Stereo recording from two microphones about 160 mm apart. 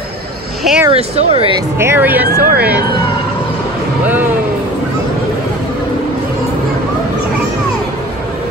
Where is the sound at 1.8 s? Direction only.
15° right (ahead or behind).